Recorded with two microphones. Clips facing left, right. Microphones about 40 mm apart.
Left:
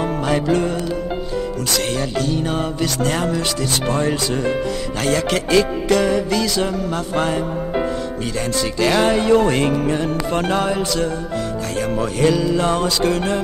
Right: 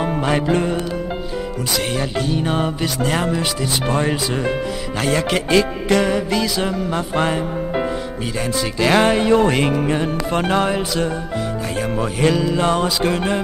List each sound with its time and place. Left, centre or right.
0.0 s music: centre
2.0 s music: centre